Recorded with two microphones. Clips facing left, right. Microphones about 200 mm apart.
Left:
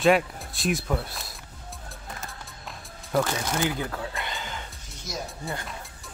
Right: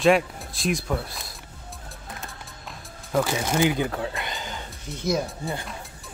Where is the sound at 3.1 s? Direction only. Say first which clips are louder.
Right 2 dB; 10° right (ahead or behind).